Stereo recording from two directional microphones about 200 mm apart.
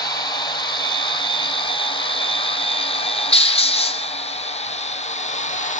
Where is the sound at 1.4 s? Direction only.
25° left (ahead or behind).